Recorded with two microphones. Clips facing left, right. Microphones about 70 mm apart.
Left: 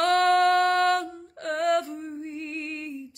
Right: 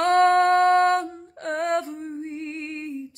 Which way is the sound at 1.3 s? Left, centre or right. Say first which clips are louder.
Even; right.